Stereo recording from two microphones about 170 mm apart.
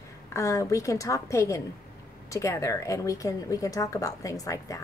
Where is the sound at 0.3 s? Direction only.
20° left (ahead or behind).